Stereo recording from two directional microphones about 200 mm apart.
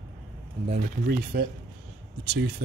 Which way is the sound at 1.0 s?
50° right (ahead or behind).